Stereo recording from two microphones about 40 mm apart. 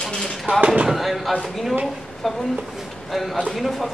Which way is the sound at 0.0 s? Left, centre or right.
Centre.